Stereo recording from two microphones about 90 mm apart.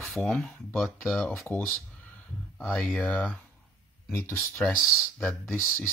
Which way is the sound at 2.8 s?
15° left (ahead or behind).